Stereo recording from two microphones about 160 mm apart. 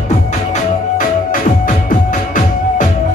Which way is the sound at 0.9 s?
55° left (ahead or behind).